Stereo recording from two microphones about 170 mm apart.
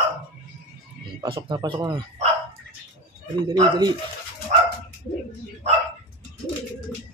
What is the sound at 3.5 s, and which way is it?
Speech, 25° right (ahead or behind).